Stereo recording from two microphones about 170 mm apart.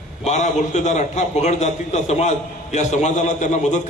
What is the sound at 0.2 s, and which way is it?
A man's voice, 45° left (ahead or behind).